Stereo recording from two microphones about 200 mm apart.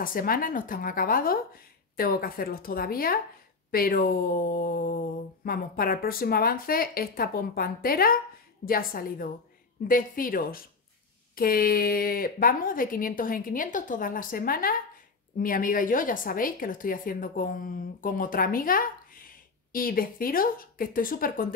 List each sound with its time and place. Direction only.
0.0 s a woman's voice: 45° left (ahead or behind)